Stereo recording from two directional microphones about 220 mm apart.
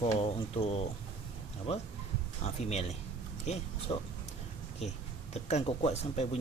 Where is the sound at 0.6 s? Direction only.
30° left (ahead or behind).